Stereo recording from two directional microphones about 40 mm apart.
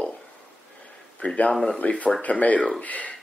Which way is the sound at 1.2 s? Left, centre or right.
Left.